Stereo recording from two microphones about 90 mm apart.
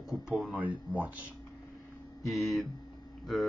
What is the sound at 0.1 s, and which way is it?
Speech, 5° right (ahead or behind).